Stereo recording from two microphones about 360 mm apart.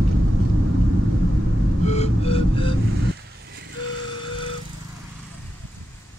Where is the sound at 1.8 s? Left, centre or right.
Centre.